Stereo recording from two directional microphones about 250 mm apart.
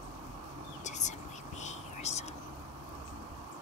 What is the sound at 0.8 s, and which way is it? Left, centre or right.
Whispering, left.